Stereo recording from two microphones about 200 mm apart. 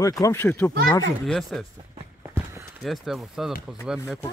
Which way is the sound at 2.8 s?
Centre (ahead or behind).